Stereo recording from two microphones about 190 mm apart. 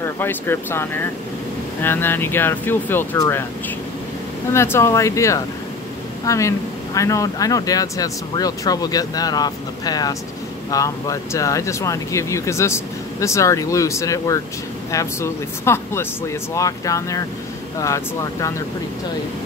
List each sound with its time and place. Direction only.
0.0 s speech: 10° left (ahead or behind)
4.5 s speech: 15° left (ahead or behind)